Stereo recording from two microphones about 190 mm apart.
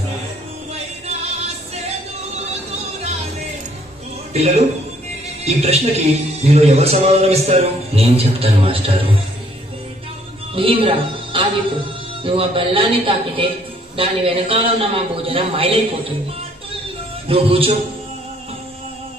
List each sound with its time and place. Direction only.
4.3 s a man's voice: 35° right (ahead or behind)
10.5 s a woman's voice: 30° right (ahead or behind)
17.3 s a man's voice: 30° right (ahead or behind)